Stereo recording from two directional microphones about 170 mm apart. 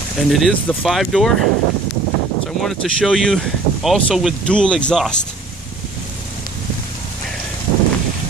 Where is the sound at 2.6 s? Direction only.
Centre (ahead or behind).